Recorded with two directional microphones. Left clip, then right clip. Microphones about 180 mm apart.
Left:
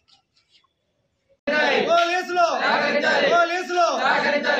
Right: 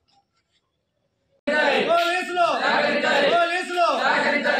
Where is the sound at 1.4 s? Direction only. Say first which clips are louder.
Even; 25° left (ahead or behind).